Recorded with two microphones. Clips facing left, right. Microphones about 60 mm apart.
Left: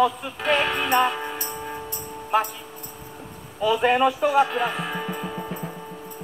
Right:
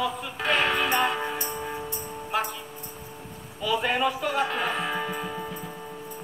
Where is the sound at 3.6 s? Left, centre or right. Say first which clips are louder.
Left 6 dB; centre.